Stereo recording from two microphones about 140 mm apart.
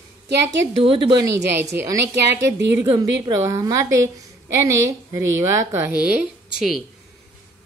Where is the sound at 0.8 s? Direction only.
35° right (ahead or behind).